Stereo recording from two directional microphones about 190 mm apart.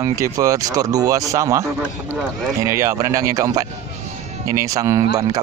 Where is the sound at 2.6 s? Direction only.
15° right (ahead or behind).